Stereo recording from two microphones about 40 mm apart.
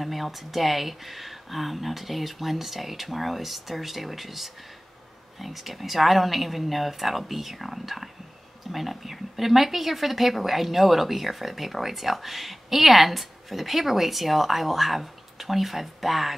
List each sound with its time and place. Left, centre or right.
0.0 s a woman's voice: centre